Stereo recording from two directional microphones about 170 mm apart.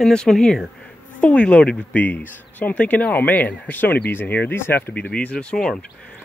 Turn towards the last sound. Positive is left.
turn(degrees=5)  # may be behind; listen again after turning